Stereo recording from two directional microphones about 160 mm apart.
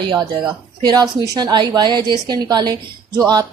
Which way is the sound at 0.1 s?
25° right (ahead or behind).